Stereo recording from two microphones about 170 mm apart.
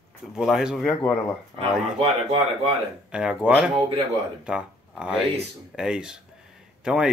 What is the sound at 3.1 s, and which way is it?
Speech, 5° right (ahead or behind).